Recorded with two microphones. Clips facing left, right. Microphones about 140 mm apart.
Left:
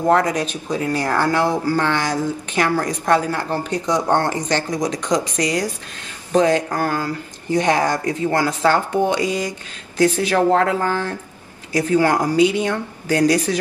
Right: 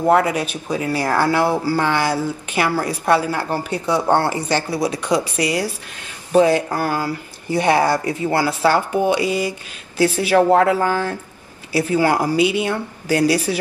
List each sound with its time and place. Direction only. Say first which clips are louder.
0.0 s speech: right 1 dB; 10° right (ahead or behind)